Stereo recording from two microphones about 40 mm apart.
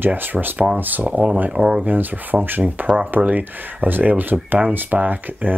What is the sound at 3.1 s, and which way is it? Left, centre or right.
Speech, right.